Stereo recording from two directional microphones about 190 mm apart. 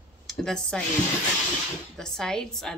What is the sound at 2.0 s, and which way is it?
Speech, 5° left (ahead or behind).